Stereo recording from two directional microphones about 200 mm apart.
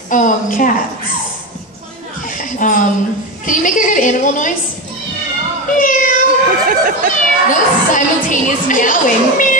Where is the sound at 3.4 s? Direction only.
40° left (ahead or behind).